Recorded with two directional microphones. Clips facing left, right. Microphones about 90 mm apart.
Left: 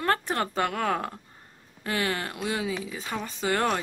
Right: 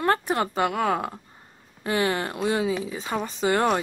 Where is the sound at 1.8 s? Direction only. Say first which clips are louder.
Right 5 dB; 25° right (ahead or behind).